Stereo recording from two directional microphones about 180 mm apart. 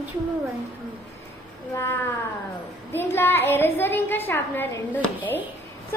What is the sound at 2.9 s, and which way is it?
A woman's voice, 10° left (ahead or behind).